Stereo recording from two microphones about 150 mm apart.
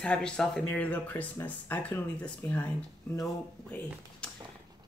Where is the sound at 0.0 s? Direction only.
5° left (ahead or behind).